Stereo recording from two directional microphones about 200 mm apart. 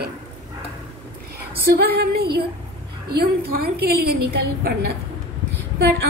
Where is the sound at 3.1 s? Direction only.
50° right (ahead or behind).